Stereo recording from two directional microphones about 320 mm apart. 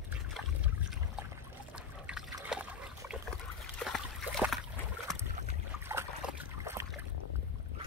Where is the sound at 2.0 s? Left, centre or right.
Centre.